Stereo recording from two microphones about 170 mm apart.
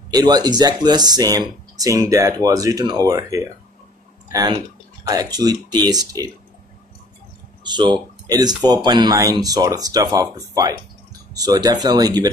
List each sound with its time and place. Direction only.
0.1 s speech: 25° right (ahead or behind)
7.6 s speech: 25° right (ahead or behind)